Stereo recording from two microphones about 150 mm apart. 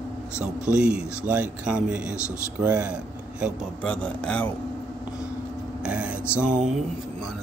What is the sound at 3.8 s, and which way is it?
Speech, 10° left (ahead or behind).